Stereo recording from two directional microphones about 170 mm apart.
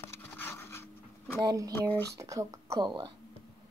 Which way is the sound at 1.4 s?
20° right (ahead or behind).